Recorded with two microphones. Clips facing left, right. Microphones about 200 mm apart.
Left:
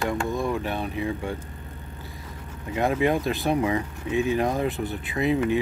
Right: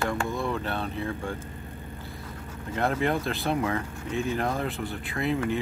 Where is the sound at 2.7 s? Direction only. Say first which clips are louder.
Left 4 dB; 15° left (ahead or behind).